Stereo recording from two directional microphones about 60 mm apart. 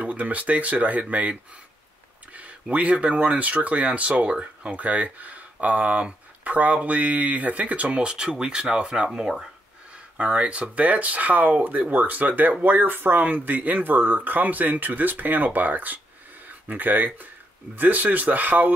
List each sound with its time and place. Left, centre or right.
0.0 s speech: right